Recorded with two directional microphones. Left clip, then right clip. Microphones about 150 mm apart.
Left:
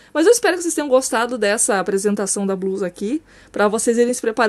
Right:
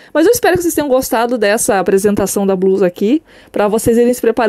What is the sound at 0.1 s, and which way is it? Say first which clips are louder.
Speech: right 4 dB; 40° right (ahead or behind).